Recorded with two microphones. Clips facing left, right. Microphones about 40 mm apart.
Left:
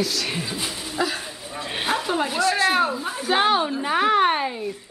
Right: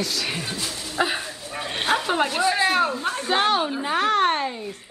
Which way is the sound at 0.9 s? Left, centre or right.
Right.